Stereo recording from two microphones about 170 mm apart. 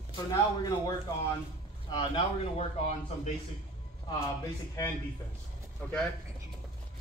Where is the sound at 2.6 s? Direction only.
40° left (ahead or behind).